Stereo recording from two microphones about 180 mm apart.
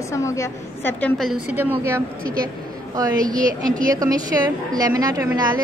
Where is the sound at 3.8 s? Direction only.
20° right (ahead or behind).